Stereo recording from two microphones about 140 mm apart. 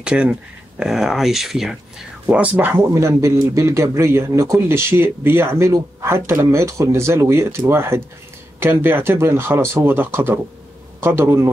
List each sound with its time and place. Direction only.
0.0 s speech: 10° right (ahead or behind)